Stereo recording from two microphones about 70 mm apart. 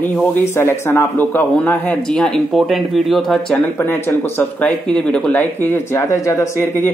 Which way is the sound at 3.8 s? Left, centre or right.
Left.